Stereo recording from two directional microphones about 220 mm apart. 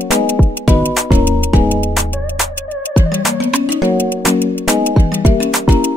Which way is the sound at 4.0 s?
10° left (ahead or behind).